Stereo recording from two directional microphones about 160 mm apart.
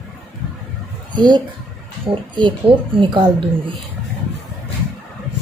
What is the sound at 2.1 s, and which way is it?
Speech, 30° right (ahead or behind).